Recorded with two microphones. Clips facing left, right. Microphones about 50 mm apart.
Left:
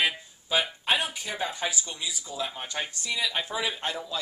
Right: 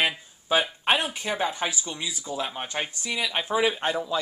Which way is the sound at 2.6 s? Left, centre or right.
Right.